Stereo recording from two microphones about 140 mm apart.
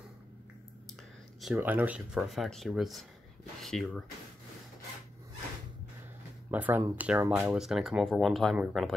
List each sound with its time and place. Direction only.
1.4 s speech: 10° right (ahead or behind)
6.5 s speech: 10° right (ahead or behind)